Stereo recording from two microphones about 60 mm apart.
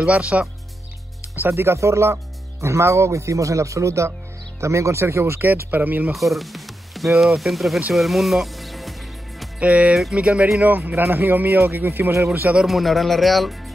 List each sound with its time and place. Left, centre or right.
0.0 s speech: right
1.5 s speech: right
5.4 s a man's voice: right
6.1 s speech: centre
9.6 s speech: right
10.9 s a man's voice: right
12.6 s speech: centre